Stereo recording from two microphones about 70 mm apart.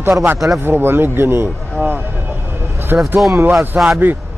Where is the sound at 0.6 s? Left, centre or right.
Right.